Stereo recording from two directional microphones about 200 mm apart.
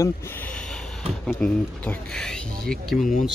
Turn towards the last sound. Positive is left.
turn(degrees=0)  # may be behind; listen again after turning